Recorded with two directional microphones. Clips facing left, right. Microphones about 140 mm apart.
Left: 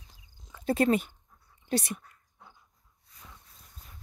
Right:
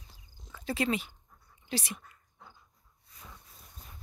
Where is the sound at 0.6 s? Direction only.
50° left (ahead or behind).